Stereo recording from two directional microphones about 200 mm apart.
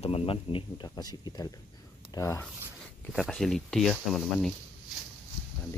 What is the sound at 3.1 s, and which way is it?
Speech, centre (ahead or behind).